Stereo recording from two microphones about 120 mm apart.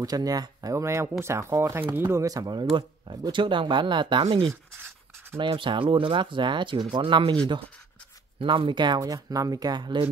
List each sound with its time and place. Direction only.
0.0 s speech: 30° right (ahead or behind)
4.7 s writing: 20° right (ahead or behind)
5.4 s speech: 45° right (ahead or behind)
8.4 s speech: 45° right (ahead or behind)